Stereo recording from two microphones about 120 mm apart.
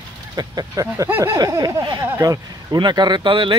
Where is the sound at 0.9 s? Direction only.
20° right (ahead or behind).